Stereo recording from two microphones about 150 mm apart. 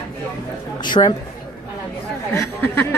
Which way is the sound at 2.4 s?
15° left (ahead or behind).